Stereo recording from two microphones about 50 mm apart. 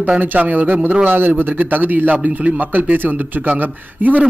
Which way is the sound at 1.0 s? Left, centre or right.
Right.